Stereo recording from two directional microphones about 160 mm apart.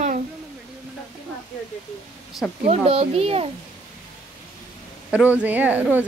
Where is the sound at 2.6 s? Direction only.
35° right (ahead or behind).